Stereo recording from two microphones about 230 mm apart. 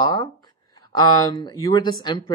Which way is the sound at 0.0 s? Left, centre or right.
Centre.